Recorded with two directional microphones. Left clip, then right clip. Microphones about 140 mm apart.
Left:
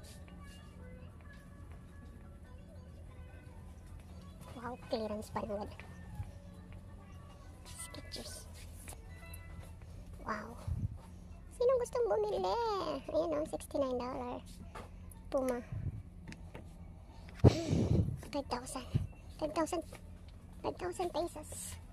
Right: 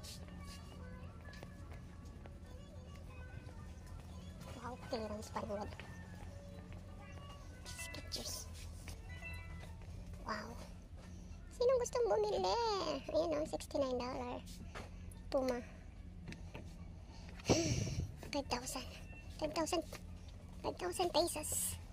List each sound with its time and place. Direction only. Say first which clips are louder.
4.6 s speech: left 5 dB; 35° left (ahead or behind)
7.9 s music: right 1 dB; 15° left (ahead or behind)
10.2 s quack: left 3 dB; 20° left (ahead or behind)
11.5 s a child's voice: left 2 dB; 15° left (ahead or behind)
17.5 s a sound: left 3 dB; 15° left (ahead or behind)
18.3 s a woman's voice: left 1 dB; 15° left (ahead or behind)
21.1 s speech: right 3 dB; centre (ahead or behind)